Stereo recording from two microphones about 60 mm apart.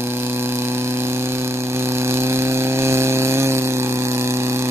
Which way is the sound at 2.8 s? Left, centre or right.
Right.